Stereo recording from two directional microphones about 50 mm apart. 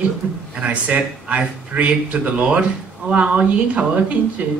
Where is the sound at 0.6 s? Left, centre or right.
Right.